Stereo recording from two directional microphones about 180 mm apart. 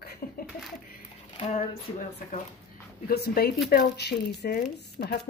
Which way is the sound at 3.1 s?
60° left (ahead or behind).